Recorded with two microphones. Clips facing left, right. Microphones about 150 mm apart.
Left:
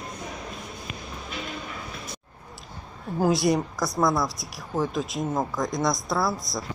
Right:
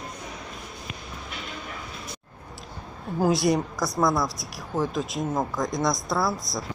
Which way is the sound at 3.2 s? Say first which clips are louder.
Even; centre (ahead or behind).